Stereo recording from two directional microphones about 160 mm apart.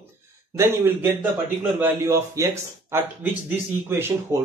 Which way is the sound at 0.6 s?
15° right (ahead or behind).